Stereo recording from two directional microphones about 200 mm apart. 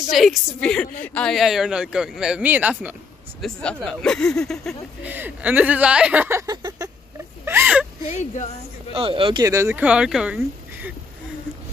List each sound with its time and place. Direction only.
0.1 s speech: centre (ahead or behind)
5.0 s speech: 10° right (ahead or behind)
7.4 s whimper: 10° right (ahead or behind)
8.0 s speech: 35° left (ahead or behind)
8.9 s speech: 25° right (ahead or behind); by 10.9 s 5° right (ahead or behind)